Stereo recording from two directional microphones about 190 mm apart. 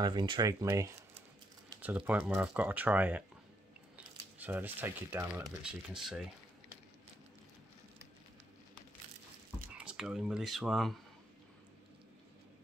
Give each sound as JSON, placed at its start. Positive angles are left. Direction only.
{"t": 0.0, "sound": "speech", "side_deg": -25}
{"t": 9.8, "sound": "speech", "side_deg": -5}